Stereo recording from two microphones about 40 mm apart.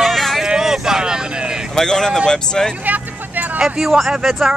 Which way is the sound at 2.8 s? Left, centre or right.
Right.